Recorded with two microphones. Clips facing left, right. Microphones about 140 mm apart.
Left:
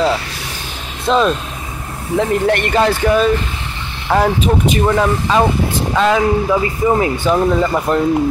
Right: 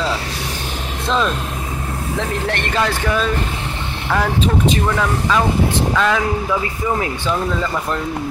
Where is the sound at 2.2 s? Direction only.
15° left (ahead or behind).